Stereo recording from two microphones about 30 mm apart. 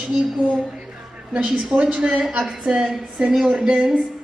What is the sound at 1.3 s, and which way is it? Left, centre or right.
A woman's voice, right.